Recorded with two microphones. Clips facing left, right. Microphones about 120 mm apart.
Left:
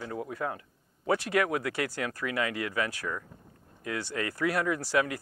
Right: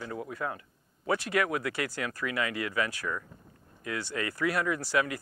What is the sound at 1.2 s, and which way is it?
Speech, 50° left (ahead or behind).